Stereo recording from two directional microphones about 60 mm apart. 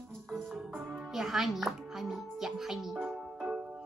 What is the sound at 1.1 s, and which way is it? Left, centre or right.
Music, centre.